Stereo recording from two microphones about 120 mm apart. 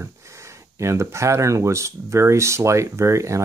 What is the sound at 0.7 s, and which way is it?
Speech, 25° right (ahead or behind).